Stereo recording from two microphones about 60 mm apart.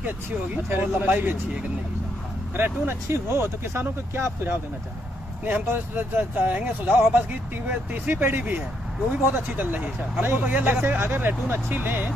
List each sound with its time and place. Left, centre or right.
0.7 s speech: right
2.5 s speech: right
5.4 s speech: right